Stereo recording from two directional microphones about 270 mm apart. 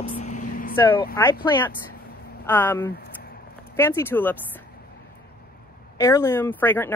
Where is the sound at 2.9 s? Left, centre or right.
Left.